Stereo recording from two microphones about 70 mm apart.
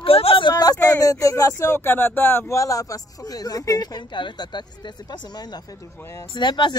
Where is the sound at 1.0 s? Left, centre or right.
Left.